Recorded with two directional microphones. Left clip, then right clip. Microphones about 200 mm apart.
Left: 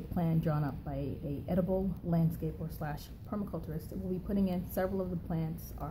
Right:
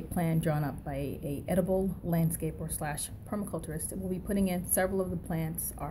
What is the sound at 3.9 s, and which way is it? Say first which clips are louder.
Speech: right 3 dB; 20° right (ahead or behind).